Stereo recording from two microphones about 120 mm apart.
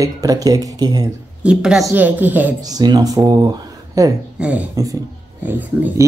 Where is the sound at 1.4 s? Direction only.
5° right (ahead or behind).